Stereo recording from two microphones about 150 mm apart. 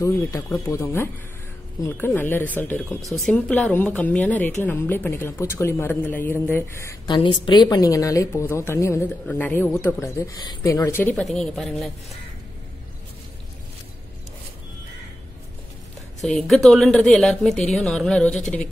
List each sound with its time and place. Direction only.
0.0 s a woman's voice: 20° left (ahead or behind)
7.1 s a woman's voice: 35° left (ahead or behind)
10.8 s speech: 15° left (ahead or behind)
11.2 s speech: centre (ahead or behind)
16.4 s speech: centre (ahead or behind)